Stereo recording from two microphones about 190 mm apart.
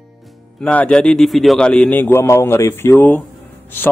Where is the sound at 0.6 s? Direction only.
5° left (ahead or behind).